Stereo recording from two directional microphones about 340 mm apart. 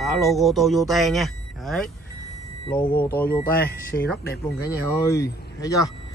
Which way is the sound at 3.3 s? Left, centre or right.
Left.